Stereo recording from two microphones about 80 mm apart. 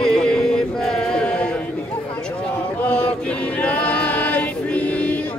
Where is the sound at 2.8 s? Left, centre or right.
Centre.